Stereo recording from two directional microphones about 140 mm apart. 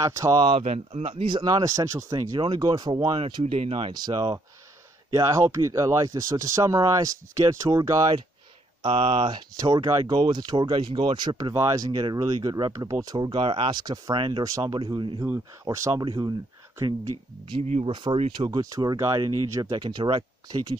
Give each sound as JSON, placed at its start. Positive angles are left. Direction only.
{"t": 0.0, "sound": "speech", "side_deg": -25}
{"t": 0.4, "sound": "speech", "side_deg": -40}
{"t": 8.8, "sound": "speech", "side_deg": -35}
{"t": 15.2, "sound": "speech", "side_deg": -20}
{"t": 17.5, "sound": "speech", "side_deg": -50}
{"t": 17.9, "sound": "speech", "side_deg": -40}
{"t": 18.5, "sound": "speech", "side_deg": -30}